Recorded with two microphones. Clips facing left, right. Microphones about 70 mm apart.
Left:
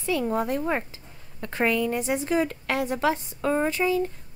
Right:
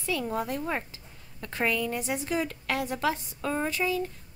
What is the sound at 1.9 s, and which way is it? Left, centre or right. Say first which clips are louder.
A woman's voice: left 5 dB; left.